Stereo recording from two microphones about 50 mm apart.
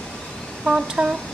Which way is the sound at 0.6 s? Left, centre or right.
Centre.